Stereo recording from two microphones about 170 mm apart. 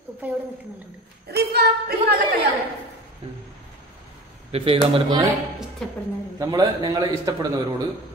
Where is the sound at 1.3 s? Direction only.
65° right (ahead or behind).